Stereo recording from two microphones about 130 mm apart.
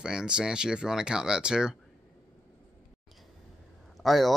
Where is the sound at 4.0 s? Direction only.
Centre (ahead or behind).